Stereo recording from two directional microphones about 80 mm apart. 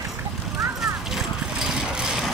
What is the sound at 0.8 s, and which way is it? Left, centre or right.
Vehicle, centre.